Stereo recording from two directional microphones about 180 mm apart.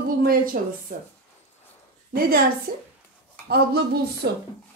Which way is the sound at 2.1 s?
55° right (ahead or behind).